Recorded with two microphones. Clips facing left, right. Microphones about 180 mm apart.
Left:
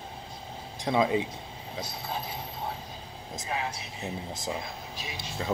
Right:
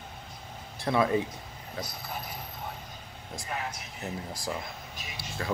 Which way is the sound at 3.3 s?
20° left (ahead or behind).